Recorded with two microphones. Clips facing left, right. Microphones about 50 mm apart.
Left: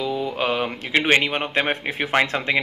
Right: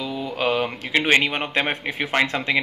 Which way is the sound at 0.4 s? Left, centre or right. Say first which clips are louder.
Right 5 dB; centre.